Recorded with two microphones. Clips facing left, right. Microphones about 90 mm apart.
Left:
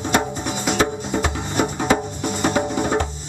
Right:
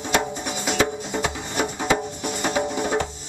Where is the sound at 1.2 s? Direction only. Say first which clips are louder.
Left 2 dB; 35° left (ahead or behind).